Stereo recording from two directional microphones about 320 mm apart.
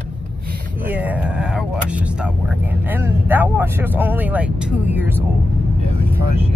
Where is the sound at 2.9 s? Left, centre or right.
Centre.